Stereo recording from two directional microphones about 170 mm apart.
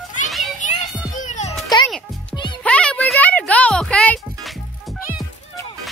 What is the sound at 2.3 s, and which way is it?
Music, 5° left (ahead or behind).